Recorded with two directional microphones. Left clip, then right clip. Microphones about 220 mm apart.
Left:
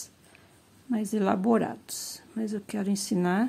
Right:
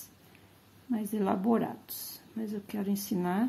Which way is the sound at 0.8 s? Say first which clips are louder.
Left 4 dB; 25° left (ahead or behind).